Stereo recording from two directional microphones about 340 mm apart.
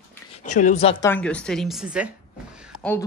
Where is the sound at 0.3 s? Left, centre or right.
Left.